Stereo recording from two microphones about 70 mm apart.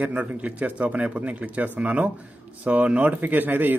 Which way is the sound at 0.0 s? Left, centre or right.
Centre.